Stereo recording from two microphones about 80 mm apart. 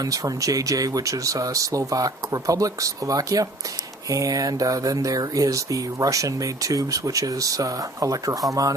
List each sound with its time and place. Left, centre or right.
0.0 s speech: right